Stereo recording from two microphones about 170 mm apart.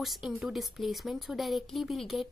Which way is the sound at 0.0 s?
Centre (ahead or behind).